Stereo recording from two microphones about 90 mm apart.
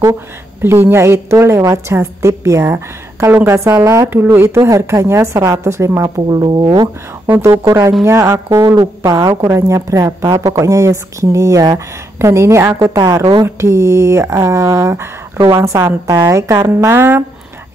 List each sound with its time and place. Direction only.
0.6 s a woman's voice: 25° right (ahead or behind)
6.0 s speech: 45° right (ahead or behind)
7.6 s a woman's voice: 35° right (ahead or behind)
12.2 s a woman's voice: 30° right (ahead or behind)